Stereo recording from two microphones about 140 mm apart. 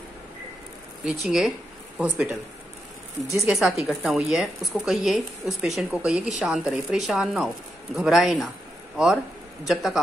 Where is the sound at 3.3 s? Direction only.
5° right (ahead or behind).